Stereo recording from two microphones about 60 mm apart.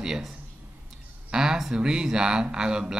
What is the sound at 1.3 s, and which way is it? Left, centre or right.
Speech, centre.